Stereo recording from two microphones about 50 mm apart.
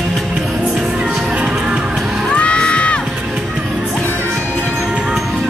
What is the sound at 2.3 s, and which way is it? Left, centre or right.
Music, left.